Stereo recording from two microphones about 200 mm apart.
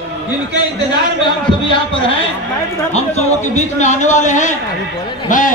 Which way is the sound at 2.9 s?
35° left (ahead or behind).